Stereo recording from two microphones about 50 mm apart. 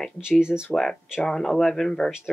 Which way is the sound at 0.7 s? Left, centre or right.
Centre.